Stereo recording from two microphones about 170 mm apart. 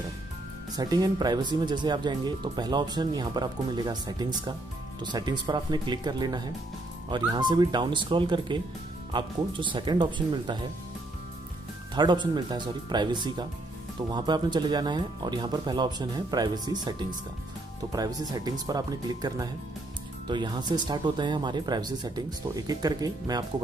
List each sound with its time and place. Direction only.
0.7 s speech: 25° right (ahead or behind)
11.9 s speech: 25° right (ahead or behind)
17.9 s speech: 20° right (ahead or behind)